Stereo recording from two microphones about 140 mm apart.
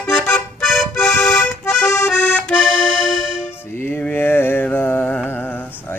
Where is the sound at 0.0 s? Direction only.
10° left (ahead or behind).